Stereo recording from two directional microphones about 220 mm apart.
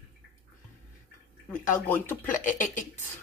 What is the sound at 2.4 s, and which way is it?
Speech, 35° left (ahead or behind).